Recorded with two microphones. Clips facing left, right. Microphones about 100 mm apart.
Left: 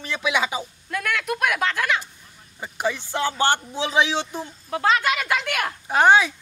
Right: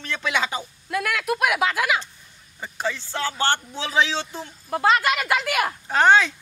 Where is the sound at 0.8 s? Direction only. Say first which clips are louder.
Right 2 dB; 5° right (ahead or behind).